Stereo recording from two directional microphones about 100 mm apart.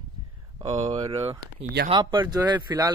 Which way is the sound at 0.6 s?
40° right (ahead or behind).